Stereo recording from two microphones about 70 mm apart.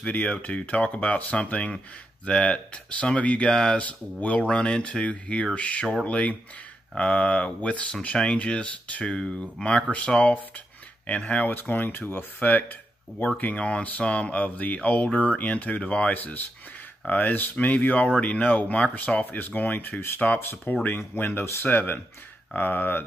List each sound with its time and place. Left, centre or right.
0.0 s speech: left